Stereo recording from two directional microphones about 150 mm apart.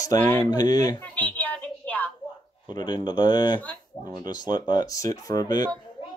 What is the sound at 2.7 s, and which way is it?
Speech, 30° left (ahead or behind).